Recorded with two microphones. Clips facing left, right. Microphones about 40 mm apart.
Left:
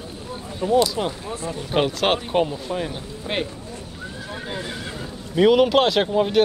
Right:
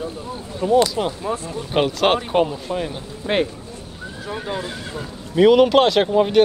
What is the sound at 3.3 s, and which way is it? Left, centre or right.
Speech, right.